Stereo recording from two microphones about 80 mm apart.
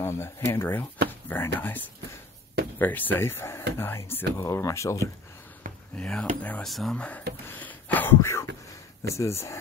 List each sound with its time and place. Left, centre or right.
0.0 s speech: left
5.9 s speech: centre
6.6 s speech: centre
7.0 s speech: centre; by 9.6 s left